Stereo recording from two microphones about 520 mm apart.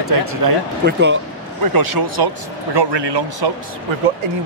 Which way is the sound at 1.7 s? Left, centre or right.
Right.